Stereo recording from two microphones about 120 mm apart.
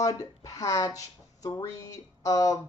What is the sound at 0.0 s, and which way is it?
Speech, 30° left (ahead or behind).